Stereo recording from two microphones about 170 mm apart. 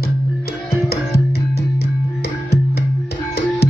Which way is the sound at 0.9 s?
70° left (ahead or behind).